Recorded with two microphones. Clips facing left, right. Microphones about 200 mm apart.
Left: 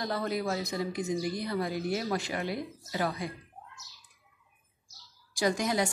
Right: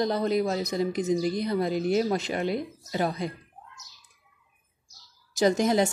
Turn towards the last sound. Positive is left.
turn(degrees=-25)  # may be behind; listen again after turning